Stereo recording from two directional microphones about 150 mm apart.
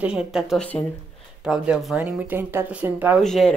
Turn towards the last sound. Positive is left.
turn(degrees=5)  # may be behind; listen again after turning